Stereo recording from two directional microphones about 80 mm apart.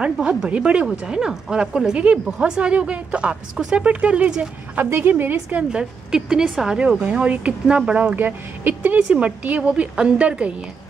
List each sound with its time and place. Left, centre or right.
0.0 s a woman's voice: centre